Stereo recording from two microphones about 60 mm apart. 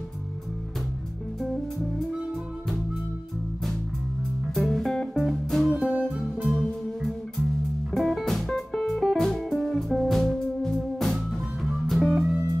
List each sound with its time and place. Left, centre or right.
1.4 s music: centre
4.6 s music: centre
5.8 s music: centre
6.2 s music: centre